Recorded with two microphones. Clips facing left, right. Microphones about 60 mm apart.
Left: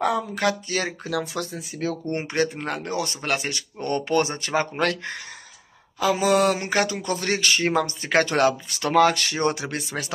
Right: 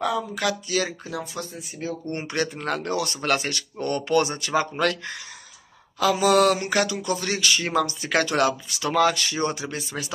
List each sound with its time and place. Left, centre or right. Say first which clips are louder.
0.0 s speech: left 2 dB; left
1.0 s speech: left 5 dB; left
2.0 s a sound: left 2 dB; left
2.6 s speech: right 1 dB; centre
3.8 s speech: even; left
5.9 s a sound: right 1 dB; left
6.6 s speech: even; left